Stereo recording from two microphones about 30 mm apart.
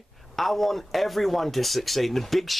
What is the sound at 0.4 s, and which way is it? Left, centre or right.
Speech, centre.